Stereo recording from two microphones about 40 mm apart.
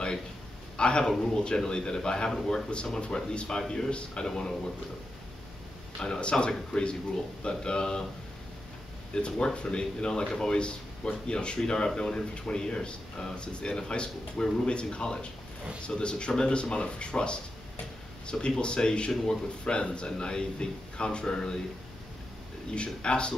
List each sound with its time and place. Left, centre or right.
0.7 s a man's voice: left
4.3 s speech: centre
5.9 s speech: left
9.1 s speech: left
22.7 s speech: left